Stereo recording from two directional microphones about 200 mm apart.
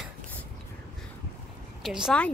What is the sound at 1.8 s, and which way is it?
Speech, centre (ahead or behind).